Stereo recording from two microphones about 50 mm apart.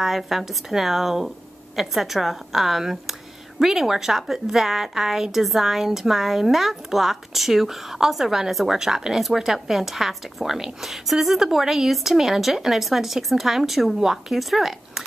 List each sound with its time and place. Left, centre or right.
0.0 s a woman's voice: centre